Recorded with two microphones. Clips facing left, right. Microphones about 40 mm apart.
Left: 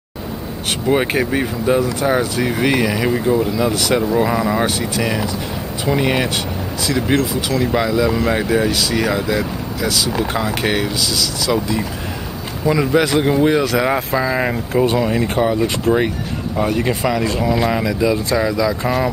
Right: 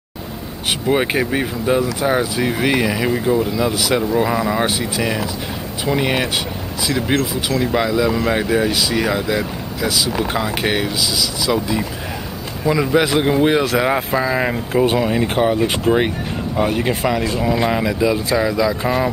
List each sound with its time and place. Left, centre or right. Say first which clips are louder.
0.8 s speech: left 1 dB; centre
4.6 s speech: left 1 dB; centre
7.5 s speech: even; centre
13.0 s speech: even; centre
13.7 s speech: even; centre
15.4 s speech: right 1 dB; right
17.0 s speech: left 1 dB; centre